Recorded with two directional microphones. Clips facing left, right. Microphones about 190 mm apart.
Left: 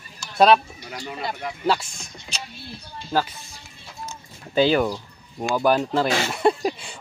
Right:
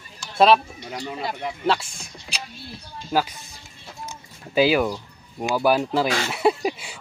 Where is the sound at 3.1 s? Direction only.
15° right (ahead or behind).